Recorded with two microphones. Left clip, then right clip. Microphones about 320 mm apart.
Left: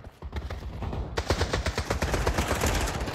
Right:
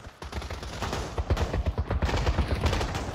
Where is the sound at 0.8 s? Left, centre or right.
Right.